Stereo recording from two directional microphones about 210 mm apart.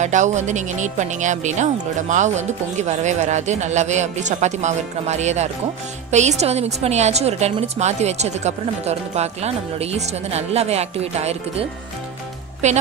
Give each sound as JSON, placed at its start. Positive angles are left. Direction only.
{"t": 0.0, "sound": "speech", "side_deg": -35}
{"t": 12.6, "sound": "speech", "side_deg": -35}